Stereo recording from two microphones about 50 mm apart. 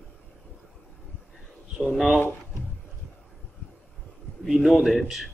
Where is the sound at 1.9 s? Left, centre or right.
Centre.